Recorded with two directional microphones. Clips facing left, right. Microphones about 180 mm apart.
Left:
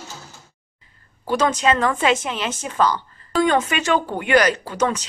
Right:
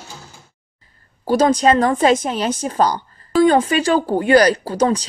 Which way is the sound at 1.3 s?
35° right (ahead or behind).